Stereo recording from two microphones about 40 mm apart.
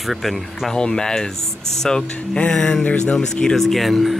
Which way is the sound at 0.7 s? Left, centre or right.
Centre.